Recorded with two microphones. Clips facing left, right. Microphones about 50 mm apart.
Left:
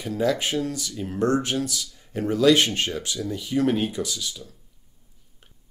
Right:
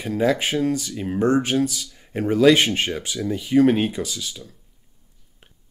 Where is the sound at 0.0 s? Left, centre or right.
Right.